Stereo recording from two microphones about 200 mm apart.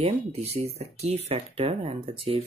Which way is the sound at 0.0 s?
30° right (ahead or behind).